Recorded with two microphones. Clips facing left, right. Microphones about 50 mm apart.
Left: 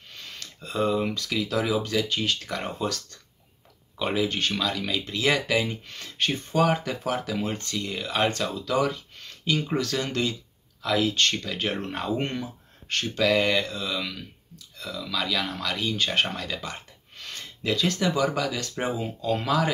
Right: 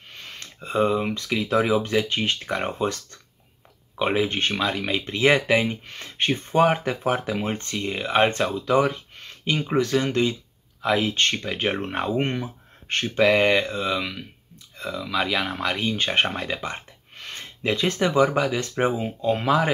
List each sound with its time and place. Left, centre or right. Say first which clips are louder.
0.1 s speech: right 2 dB; right